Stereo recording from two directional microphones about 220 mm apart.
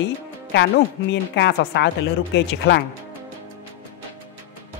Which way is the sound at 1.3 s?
50° left (ahead or behind).